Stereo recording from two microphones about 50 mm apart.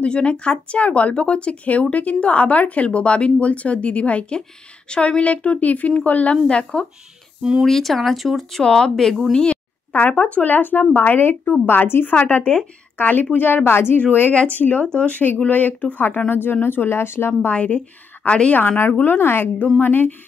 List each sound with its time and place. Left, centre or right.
0.0 s speech: left
6.3 s speech: centre
7.6 s speech: centre
8.6 s speech: centre
9.9 s speech: left
12.2 s speech: left
13.7 s a woman's voice: left
14.5 s speech: left
14.9 s a woman's voice: left
17.3 s speech: left
18.5 s a woman's voice: left